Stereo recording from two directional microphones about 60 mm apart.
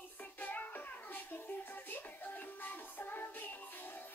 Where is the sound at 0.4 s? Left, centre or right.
Left.